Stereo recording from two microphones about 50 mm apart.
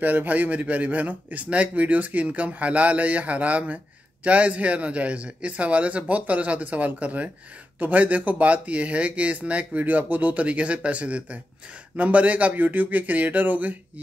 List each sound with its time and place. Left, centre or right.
0.0 s a man's voice: right